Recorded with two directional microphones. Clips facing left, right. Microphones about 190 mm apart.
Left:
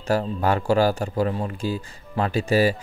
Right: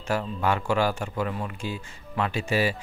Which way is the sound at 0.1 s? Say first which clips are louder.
Left 4 dB; 40° left (ahead or behind).